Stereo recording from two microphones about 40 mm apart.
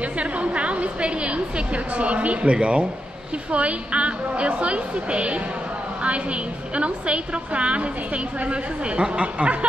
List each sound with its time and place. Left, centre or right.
0.2 s a woman's voice: right
6.7 s a woman's voice: right